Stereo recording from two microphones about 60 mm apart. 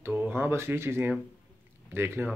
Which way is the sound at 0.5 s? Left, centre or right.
Right.